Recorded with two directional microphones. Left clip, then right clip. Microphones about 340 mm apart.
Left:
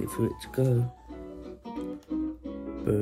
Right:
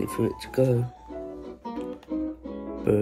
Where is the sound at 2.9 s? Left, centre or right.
Centre.